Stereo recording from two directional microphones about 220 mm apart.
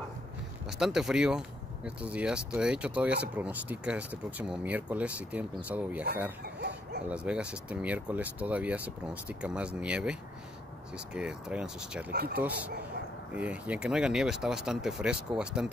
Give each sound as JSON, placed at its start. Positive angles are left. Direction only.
{"t": 0.7, "sound": "speech", "side_deg": 0}
{"t": 6.4, "sound": "a sound", "side_deg": -45}
{"t": 7.1, "sound": "speech", "side_deg": -5}
{"t": 11.1, "sound": "speech", "side_deg": -5}
{"t": 12.1, "sound": "speech", "side_deg": -45}
{"t": 13.3, "sound": "speech", "side_deg": -5}